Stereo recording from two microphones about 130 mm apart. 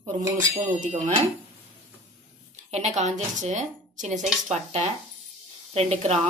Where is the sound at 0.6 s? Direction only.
75° right (ahead or behind).